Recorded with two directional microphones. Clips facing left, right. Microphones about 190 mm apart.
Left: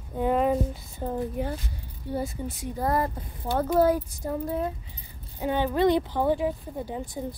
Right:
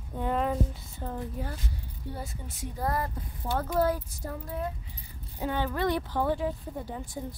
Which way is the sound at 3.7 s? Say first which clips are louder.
Left 6 dB; 15° left (ahead or behind).